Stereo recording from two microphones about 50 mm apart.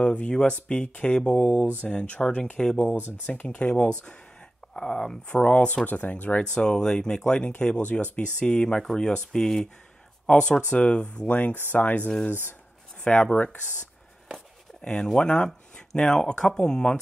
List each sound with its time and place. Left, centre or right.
0.0 s speech: left
6.5 s speech: centre
11.3 s speech: left
13.0 s speech: left
14.8 s speech: centre